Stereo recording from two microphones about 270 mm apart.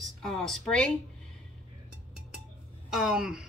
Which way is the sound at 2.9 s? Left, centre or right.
Centre.